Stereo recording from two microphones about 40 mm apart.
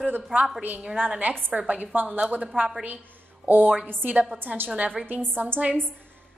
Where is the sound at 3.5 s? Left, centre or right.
Right.